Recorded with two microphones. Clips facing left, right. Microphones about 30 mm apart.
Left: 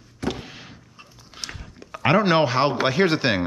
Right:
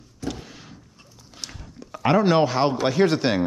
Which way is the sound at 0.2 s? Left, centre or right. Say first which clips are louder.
Left 4 dB; left.